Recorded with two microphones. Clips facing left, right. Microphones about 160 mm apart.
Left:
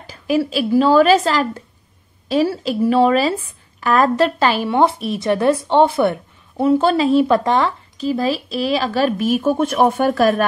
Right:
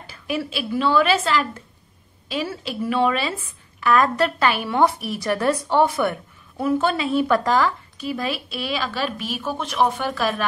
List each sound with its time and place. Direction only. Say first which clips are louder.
0.0 s a woman's voice: left 8 dB; 35° left (ahead or behind)